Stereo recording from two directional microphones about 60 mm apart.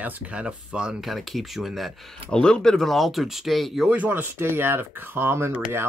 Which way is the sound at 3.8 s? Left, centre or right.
Right.